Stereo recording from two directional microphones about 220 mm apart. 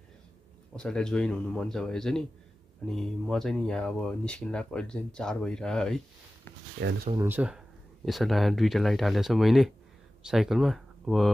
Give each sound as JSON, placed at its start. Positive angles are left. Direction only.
{"t": 0.7, "sound": "speech", "side_deg": 5}
{"t": 6.8, "sound": "speech", "side_deg": -45}
{"t": 7.2, "sound": "speech", "side_deg": -10}